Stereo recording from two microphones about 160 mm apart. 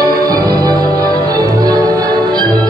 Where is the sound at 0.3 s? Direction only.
20° right (ahead or behind).